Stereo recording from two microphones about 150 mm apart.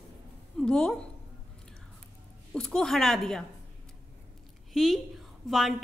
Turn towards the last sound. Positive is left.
turn(degrees=0)  # may be behind; listen again after turning